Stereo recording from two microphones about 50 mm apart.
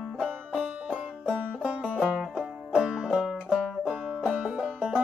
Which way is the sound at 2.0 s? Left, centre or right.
Centre.